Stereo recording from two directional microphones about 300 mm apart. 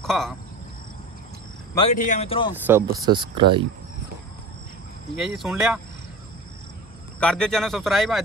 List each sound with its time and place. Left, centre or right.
0.0 s speech: centre
2.0 s speech: left
2.5 s speech: centre
5.2 s speech: centre
7.2 s speech: centre